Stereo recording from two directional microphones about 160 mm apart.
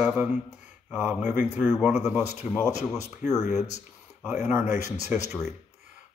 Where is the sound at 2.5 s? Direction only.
20° left (ahead or behind).